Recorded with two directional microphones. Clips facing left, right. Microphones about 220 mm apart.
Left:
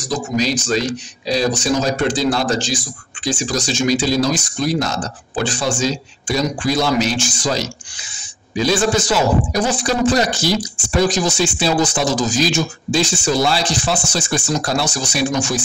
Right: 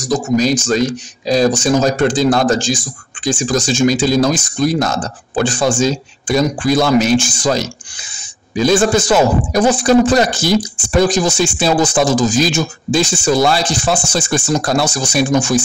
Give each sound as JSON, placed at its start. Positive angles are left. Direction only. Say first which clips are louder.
{"t": 0.4, "sound": "a man's voice", "louder": "right 1 dB", "side_deg": -50}